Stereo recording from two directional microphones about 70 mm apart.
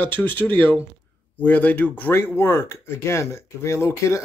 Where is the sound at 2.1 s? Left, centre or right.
Left.